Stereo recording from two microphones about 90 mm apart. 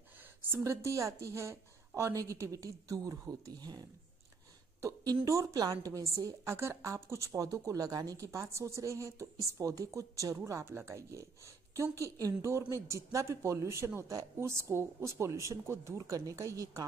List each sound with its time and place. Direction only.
0.4 s a woman's voice: 30° right (ahead or behind); by 3.8 s 45° right (ahead or behind)
5.2 s a woman's voice: 35° right (ahead or behind)